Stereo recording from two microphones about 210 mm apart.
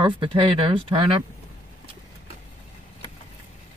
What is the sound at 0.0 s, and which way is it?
Speech, 25° right (ahead or behind).